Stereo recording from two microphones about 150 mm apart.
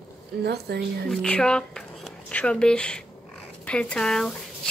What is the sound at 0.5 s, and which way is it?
Speech, 90° right.